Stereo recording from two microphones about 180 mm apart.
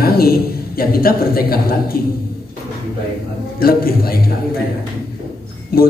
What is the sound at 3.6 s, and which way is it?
Speech, 55° left (ahead or behind).